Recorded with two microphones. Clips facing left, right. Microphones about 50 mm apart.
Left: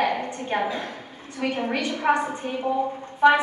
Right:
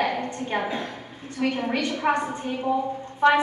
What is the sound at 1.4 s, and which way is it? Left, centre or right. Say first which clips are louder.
A woman's voice: right 1 dB; centre.